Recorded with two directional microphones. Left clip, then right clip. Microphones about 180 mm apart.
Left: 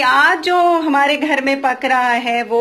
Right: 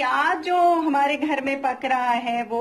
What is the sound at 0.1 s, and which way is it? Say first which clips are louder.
Speech: left 8 dB; 40° left (ahead or behind).